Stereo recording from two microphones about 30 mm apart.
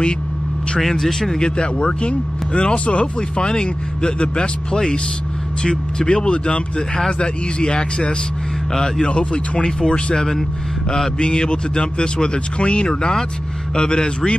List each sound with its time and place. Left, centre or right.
0.7 s speech: centre
1.4 s speech: left
3.2 s speech: left
5.6 s speech: left
9.1 s speech: left; by 10.4 s centre
11.1 s speech: left